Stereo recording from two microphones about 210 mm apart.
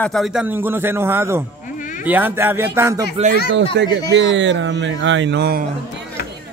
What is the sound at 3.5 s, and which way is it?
Speech, 55° right (ahead or behind).